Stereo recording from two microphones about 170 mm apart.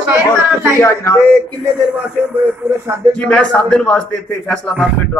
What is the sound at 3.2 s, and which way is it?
A man's voice, 5° left (ahead or behind).